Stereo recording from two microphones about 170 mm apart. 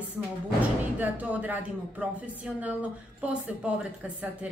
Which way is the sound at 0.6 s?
10° right (ahead or behind).